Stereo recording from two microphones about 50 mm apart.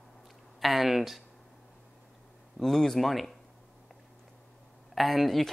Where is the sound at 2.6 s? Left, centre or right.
Centre.